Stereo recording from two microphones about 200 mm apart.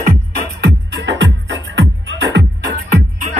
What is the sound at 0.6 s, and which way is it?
Music, 60° right (ahead or behind).